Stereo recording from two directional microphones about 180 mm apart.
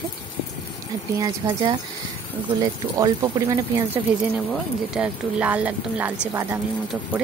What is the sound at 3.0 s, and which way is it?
Dishes, 20° right (ahead or behind).